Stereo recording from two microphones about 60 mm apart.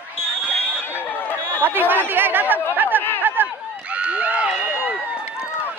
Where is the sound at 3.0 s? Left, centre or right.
Left.